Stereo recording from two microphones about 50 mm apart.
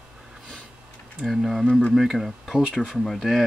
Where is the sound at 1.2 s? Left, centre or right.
Centre.